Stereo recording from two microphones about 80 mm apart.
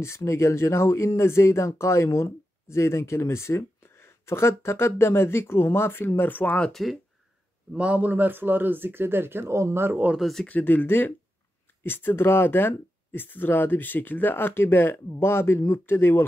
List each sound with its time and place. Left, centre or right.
0.0 s speech: left; by 6.7 s centre
6.7 s speech: centre
7.7 s speech: centre
10.1 s speech: centre
10.4 s speech: left